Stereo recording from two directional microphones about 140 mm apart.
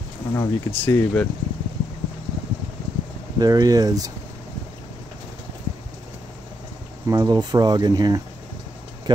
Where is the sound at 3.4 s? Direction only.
25° right (ahead or behind).